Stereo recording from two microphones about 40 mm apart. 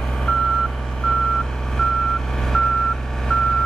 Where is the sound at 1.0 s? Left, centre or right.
Centre.